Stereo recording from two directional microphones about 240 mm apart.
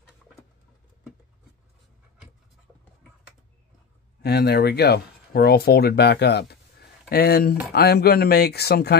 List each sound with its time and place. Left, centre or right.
4.2 s speech: left